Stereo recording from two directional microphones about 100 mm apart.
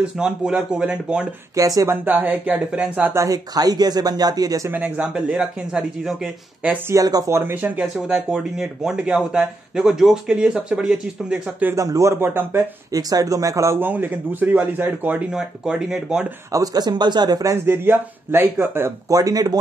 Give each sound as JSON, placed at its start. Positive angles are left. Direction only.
{"t": 0.2, "sound": "speech", "side_deg": -10}
{"t": 1.5, "sound": "speech", "side_deg": -35}
{"t": 2.0, "sound": "speech", "side_deg": -15}
{"t": 3.2, "sound": "speech", "side_deg": -35}
{"t": 4.6, "sound": "speech", "side_deg": -15}
{"t": 6.9, "sound": "speech", "side_deg": -40}
{"t": 7.3, "sound": "speech", "side_deg": -20}
{"t": 7.9, "sound": "speech", "side_deg": -5}
{"t": 11.7, "sound": "speech", "side_deg": -35}
{"t": 12.9, "sound": "speech", "side_deg": -35}
{"t": 13.7, "sound": "speech", "side_deg": -20}
{"t": 16.5, "sound": "speech", "side_deg": -40}
{"t": 17.6, "sound": "speech", "side_deg": -20}
{"t": 19.0, "sound": "speech", "side_deg": -35}